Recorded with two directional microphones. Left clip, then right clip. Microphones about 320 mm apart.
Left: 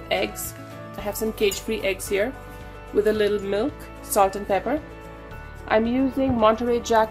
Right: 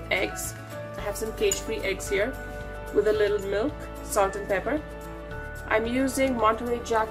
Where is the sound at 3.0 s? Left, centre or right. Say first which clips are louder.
Left 2 dB; left.